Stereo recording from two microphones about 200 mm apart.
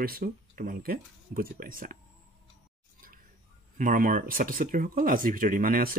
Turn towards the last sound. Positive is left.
turn(degrees=-45)  # may be behind; listen again after turning